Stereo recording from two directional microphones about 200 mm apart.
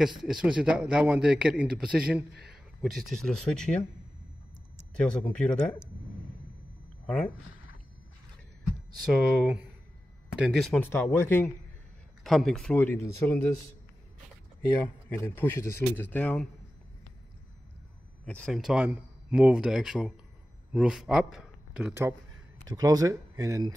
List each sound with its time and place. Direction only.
0.2 s a man's voice: centre (ahead or behind)
4.9 s a man's voice: 5° left (ahead or behind)
7.1 s a man's voice: 5° left (ahead or behind)
9.1 s a man's voice: centre (ahead or behind)
12.2 s a man's voice: centre (ahead or behind)
15.0 s a man's voice: 10° left (ahead or behind)
18.2 s a man's voice: 5° left (ahead or behind); by 23.7 s 15° right (ahead or behind)